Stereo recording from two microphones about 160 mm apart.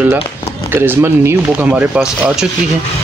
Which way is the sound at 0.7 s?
15° right (ahead or behind).